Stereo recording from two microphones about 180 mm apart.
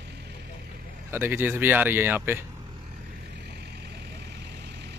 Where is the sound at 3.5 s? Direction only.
65° right (ahead or behind).